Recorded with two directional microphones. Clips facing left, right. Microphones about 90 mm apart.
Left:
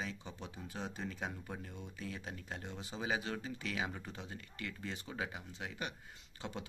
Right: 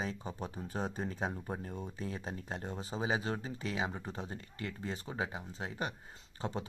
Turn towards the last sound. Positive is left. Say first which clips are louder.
# right 6 dB
turn(degrees=-35)  # may be behind; listen again after turning